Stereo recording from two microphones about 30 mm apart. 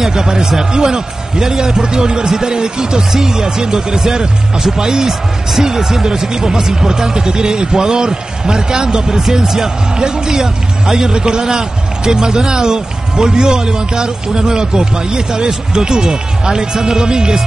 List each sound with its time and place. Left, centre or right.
0.0 s a man's voice: right
10.3 s speech: centre
11.1 s a man's voice: right